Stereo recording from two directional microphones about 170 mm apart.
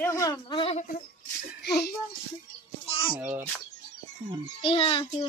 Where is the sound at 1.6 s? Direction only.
75° left (ahead or behind).